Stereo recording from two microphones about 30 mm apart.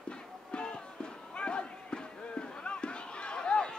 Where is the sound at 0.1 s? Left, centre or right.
Left.